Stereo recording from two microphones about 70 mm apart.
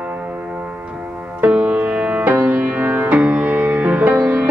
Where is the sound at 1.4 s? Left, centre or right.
Centre.